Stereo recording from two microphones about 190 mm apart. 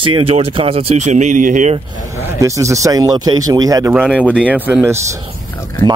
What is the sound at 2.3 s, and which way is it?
Speech, 15° right (ahead or behind).